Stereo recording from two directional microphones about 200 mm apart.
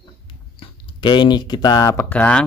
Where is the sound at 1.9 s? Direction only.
10° left (ahead or behind).